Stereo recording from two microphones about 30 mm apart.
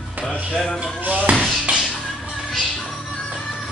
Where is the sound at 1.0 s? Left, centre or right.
Right.